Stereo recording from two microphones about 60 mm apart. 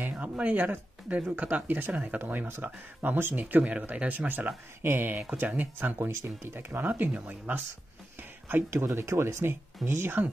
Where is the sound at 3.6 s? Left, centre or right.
Centre.